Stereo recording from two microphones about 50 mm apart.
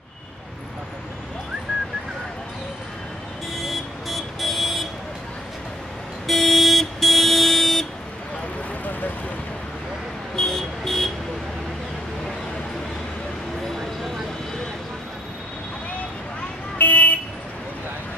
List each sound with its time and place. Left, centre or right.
3.6 s vehicle: centre
6.2 s vehicle: centre
10.3 s vehicle: centre
16.7 s vehicle: left